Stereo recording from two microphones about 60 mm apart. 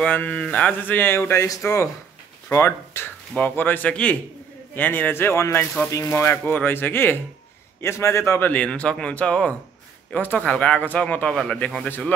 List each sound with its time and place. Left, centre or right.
0.1 s speech: left
0.9 s a man's voice: left
2.5 s a man's voice: left
3.3 s speech: left
3.9 s speech: centre
4.7 s a man's voice: left
5.9 s speech: left
6.3 s speech: left
7.8 s a man's voice: left
8.5 s speech: left
11.2 s speech: centre